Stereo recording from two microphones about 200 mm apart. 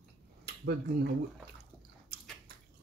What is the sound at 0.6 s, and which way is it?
Speech, 50° right (ahead or behind).